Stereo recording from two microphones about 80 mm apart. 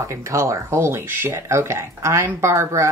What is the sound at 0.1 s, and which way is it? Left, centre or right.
Speech, right.